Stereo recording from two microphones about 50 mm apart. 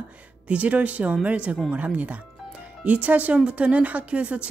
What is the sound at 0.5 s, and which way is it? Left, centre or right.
Speech, right.